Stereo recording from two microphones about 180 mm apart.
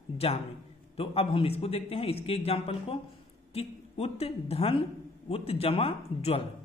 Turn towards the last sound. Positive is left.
turn(degrees=35)  # may be behind; listen again after turning